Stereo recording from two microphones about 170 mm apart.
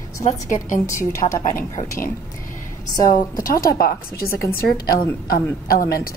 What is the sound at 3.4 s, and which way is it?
A woman's voice, 60° left (ahead or behind).